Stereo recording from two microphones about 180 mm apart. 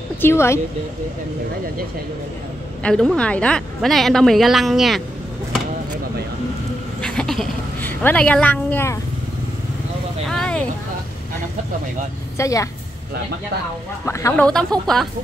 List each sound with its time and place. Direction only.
0.2 s speech: 15° left (ahead or behind)
2.8 s a woman's voice: 5° left (ahead or behind)
7.0 s a sound: 5° left (ahead or behind)
8.0 s speech: 10° left (ahead or behind)
10.2 s vehicle: 5° left (ahead or behind)
12.4 s speech: 20° left (ahead or behind)
14.0 s speech: 15° left (ahead or behind)
14.4 s a woman's voice: 5° left (ahead or behind)